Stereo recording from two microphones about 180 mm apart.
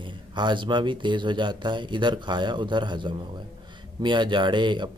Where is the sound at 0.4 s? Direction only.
25° right (ahead or behind).